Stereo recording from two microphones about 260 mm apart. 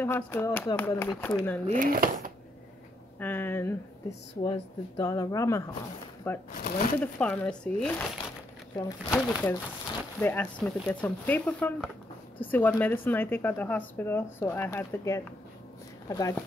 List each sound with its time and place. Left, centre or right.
0.0 s speech: centre
1.7 s speech: right
3.2 s speech: centre
6.5 s speech: left
7.0 s speech: centre